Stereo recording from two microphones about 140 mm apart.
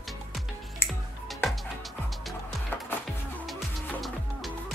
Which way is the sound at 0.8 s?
15° left (ahead or behind).